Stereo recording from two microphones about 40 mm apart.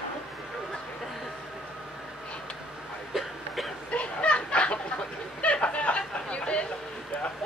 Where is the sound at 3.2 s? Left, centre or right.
Centre.